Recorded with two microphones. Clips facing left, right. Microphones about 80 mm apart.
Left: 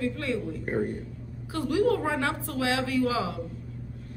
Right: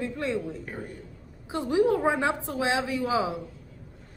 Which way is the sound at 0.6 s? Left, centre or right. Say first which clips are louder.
Left 9 dB; left.